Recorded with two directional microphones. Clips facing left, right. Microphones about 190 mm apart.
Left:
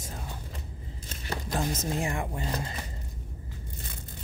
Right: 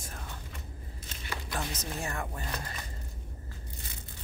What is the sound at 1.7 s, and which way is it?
Speech, 50° left (ahead or behind).